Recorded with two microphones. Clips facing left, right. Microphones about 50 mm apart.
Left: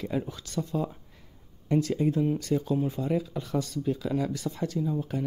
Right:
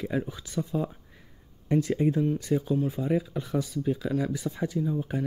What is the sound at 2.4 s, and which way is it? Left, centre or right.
Speech, centre.